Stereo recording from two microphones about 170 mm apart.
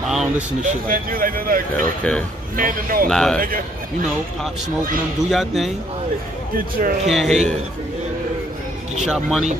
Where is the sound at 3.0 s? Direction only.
5° left (ahead or behind).